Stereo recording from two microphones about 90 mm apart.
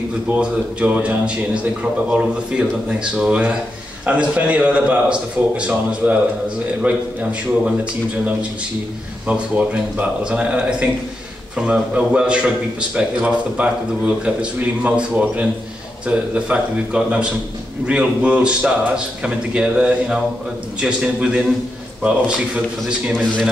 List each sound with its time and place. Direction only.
0.3 s a man's voice: 15° right (ahead or behind)
9.3 s a man's voice: 15° right (ahead or behind)